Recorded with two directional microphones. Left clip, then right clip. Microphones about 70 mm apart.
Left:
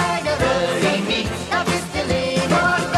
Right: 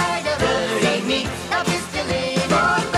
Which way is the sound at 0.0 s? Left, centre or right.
Right.